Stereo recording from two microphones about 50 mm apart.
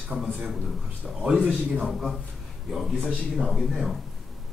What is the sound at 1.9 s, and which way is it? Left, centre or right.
A man's voice, centre.